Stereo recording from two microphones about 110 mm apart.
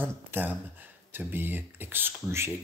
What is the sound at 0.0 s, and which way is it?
Speech, 20° right (ahead or behind).